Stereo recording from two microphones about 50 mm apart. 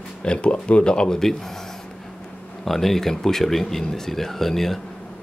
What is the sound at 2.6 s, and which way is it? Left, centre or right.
Speech, centre.